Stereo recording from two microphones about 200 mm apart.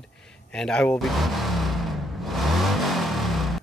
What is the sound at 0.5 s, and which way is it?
Vehicle, 5° left (ahead or behind).